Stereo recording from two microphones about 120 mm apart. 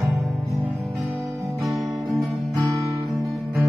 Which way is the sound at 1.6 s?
Centre (ahead or behind).